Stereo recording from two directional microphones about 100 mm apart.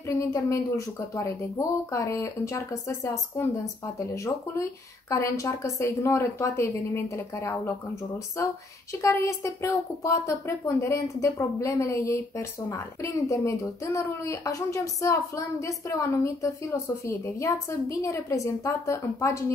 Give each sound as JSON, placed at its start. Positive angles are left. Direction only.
{"t": 0.1, "sound": "a woman's voice", "side_deg": 30}